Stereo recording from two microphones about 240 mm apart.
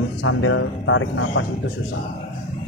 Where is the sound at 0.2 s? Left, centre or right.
Left.